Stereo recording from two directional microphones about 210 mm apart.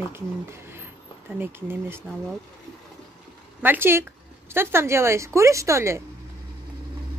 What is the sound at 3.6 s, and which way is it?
A woman's voice, 10° right (ahead or behind).